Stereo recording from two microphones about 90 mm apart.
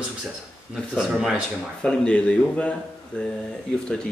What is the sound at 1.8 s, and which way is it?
Speech, 10° left (ahead or behind).